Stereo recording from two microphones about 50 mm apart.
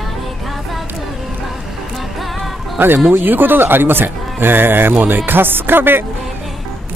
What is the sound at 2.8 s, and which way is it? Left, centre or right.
A man's voice, right.